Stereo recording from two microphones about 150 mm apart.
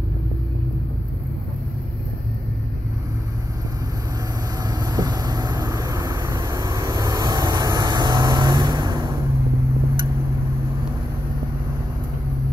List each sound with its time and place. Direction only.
4.6 s vehicle: 25° right (ahead or behind)